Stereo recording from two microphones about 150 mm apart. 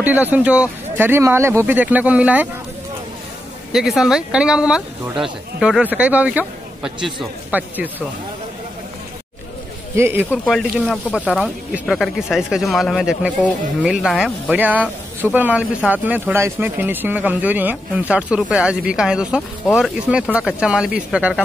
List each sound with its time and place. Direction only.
0.0 s speech: 10° right (ahead or behind)
3.7 s speech: 5° right (ahead or behind)
9.9 s speech: 15° right (ahead or behind)
10.4 s speech: centre (ahead or behind)